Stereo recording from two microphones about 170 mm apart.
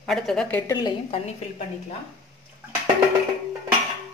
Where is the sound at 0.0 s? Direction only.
Centre (ahead or behind).